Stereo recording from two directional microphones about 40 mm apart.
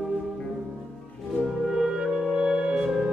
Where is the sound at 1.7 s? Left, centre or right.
Centre.